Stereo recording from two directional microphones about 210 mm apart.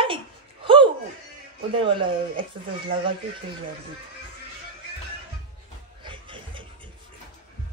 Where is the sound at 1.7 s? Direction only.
25° right (ahead or behind).